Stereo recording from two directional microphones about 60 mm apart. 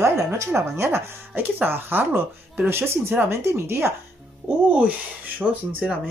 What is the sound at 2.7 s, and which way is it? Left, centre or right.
Speech, right.